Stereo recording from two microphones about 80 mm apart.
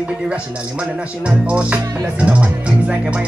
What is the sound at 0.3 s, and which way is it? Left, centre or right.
Speech, centre.